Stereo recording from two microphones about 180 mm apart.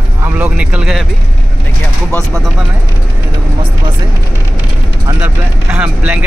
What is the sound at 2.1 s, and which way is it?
Speech, 5° left (ahead or behind).